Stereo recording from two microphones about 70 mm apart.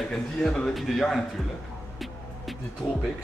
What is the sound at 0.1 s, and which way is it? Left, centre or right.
A man's voice, centre.